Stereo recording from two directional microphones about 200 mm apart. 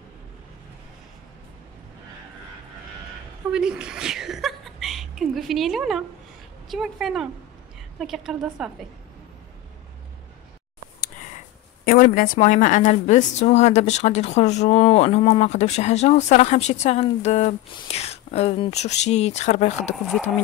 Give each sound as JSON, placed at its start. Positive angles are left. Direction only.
{"t": 3.5, "sound": "a woman's voice", "side_deg": -5}
{"t": 11.8, "sound": "a woman's voice", "side_deg": 45}